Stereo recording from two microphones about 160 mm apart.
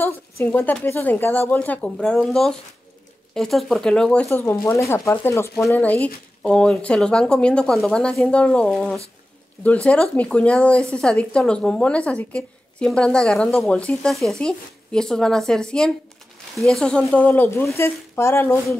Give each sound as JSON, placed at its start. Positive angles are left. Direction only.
{"t": 0.0, "sound": "speech", "side_deg": 10}